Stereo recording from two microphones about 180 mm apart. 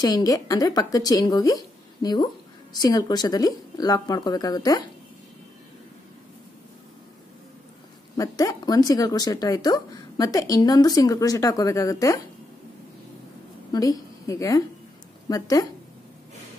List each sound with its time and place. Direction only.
0.0 s speech: 20° left (ahead or behind)
8.2 s speech: 20° left (ahead or behind)
13.7 s a woman's voice: 20° left (ahead or behind)